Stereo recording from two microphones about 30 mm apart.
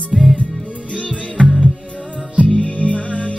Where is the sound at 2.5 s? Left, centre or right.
Left.